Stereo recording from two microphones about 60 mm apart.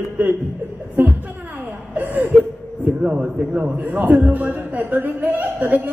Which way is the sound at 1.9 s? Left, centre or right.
Right.